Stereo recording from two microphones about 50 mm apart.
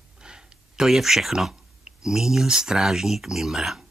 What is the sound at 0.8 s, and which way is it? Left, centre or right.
Speech, centre.